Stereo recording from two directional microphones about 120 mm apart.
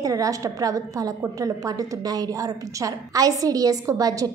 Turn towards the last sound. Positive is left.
turn(degrees=-30)  # may be behind; listen again after turning